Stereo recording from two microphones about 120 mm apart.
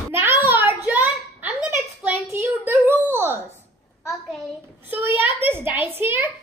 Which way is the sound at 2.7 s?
20° right (ahead or behind).